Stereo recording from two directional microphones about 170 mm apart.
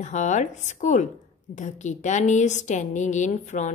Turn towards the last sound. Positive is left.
turn(degrees=45)  # may be behind; listen again after turning